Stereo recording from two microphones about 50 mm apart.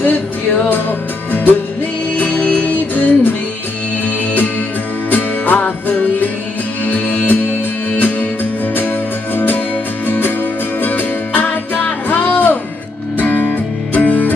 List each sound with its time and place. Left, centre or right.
0.0 s music: left
8.7 s music: left